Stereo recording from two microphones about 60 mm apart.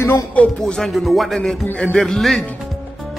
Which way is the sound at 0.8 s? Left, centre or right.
Centre.